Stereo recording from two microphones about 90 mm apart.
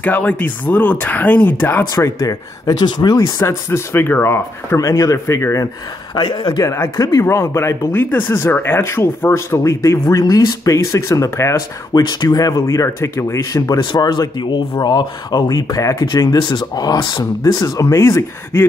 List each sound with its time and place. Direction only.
0.0 s speech: 15° left (ahead or behind)
2.0 s speech: 35° left (ahead or behind)
3.2 s speech: 35° left (ahead or behind)
4.7 s speech: 35° left (ahead or behind)
6.1 s a man's voice: 55° left (ahead or behind)
6.6 s speech: 35° left (ahead or behind)
7.2 s speech: 30° left (ahead or behind)
11.9 s speech: 50° left (ahead or behind)
13.7 s speech: 50° left (ahead or behind)
16.0 s speech: 50° left (ahead or behind); by 18.7 s 30° left (ahead or behind)